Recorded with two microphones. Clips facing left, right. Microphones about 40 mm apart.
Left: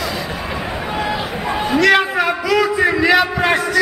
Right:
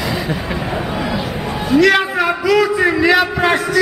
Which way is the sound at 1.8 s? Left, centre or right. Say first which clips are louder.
Right 1 dB; centre.